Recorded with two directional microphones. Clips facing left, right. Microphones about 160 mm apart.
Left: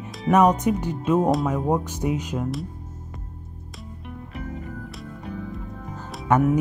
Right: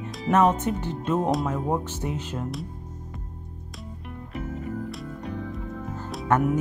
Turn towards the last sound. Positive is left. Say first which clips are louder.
# left 3 dB
turn(degrees=20)  # may be behind; listen again after turning